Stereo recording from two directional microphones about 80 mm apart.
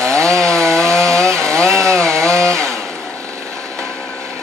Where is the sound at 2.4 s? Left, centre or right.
Right.